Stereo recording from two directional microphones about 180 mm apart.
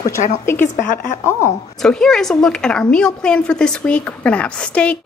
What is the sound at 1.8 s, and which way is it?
A woman's voice, 5° left (ahead or behind).